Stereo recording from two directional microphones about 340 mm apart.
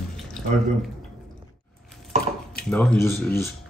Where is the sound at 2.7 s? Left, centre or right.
Centre.